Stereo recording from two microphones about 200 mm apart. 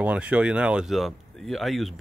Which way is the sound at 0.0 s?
5° right (ahead or behind).